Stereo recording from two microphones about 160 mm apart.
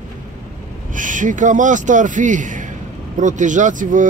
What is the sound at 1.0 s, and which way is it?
Speech, 55° right (ahead or behind).